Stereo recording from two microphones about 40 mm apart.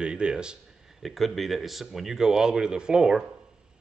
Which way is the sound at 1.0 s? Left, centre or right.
Centre.